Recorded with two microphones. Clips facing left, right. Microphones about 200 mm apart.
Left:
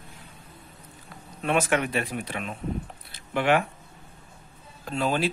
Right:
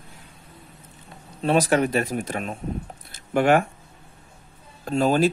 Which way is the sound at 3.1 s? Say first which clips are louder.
Right 5 dB; 45° right (ahead or behind).